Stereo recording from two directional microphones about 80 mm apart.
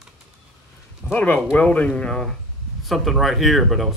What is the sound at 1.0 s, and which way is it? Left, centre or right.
Speech, left.